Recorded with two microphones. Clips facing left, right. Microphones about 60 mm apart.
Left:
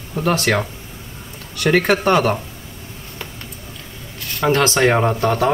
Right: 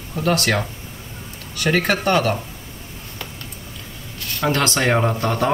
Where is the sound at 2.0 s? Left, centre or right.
Centre.